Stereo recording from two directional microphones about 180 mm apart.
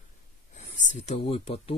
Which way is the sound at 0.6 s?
40° left (ahead or behind).